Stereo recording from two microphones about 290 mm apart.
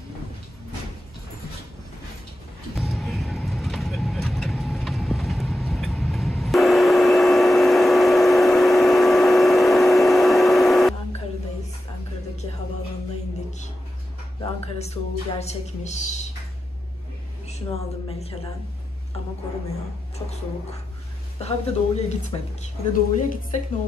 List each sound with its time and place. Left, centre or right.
2.7 s vehicle: centre
14.6 s music: left
18.0 s speech: centre
20.2 s speech: centre
21.4 s speech: left